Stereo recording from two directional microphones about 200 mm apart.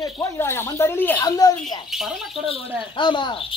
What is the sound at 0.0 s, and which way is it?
Speech, 10° left (ahead or behind).